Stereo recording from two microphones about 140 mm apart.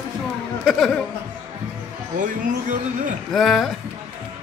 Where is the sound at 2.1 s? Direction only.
65° right (ahead or behind).